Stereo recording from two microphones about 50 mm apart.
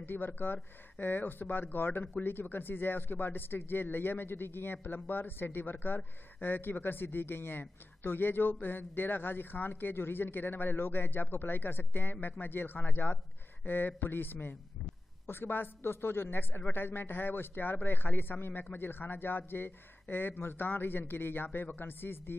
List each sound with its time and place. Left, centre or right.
0.0 s a man's voice: left